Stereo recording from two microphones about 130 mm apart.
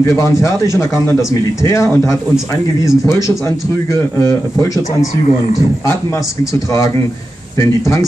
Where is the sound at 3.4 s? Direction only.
20° left (ahead or behind).